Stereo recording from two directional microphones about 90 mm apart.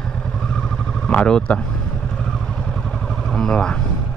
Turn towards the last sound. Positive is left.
turn(degrees=10)  # may be behind; listen again after turning